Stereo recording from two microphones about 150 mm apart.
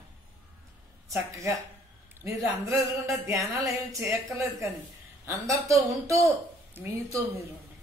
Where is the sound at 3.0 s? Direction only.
20° right (ahead or behind).